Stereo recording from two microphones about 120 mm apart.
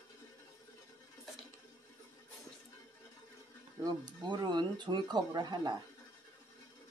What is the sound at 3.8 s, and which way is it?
Speech, 35° right (ahead or behind).